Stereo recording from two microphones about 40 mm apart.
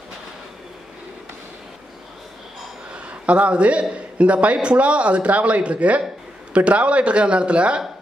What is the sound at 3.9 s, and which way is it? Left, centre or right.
A man's voice, right.